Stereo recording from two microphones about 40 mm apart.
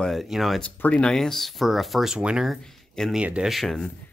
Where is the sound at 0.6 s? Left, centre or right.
Left.